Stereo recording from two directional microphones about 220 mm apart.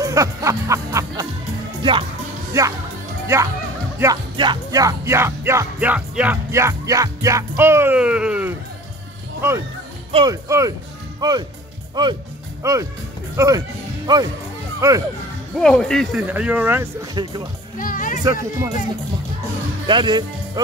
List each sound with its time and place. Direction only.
0.0 s music: 15° right (ahead or behind)
1.8 s speech: 25° right (ahead or behind)
3.3 s music: 10° right (ahead or behind)
10.1 s music: 15° right (ahead or behind)
11.1 s speech: 20° right (ahead or behind)
12.6 s music: 15° right (ahead or behind)
13.4 s speech: 15° right (ahead or behind)
15.5 s speech: 5° left (ahead or behind)
17.1 s speech: 20° right (ahead or behind)
17.7 s speech: 40° left (ahead or behind)
18.2 s music: 15° right (ahead or behind)
19.9 s speech: 20° right (ahead or behind)